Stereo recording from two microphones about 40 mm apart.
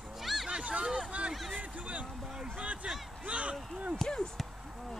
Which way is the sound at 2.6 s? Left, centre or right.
Right.